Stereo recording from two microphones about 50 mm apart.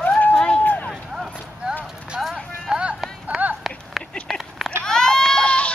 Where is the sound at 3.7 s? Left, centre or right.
Centre.